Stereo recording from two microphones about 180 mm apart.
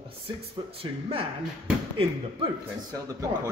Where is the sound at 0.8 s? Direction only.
30° right (ahead or behind).